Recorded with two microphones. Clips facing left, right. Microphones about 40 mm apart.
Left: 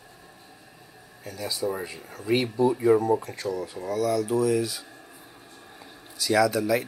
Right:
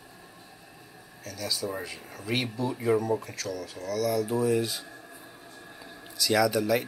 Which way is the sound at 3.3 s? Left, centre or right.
Left.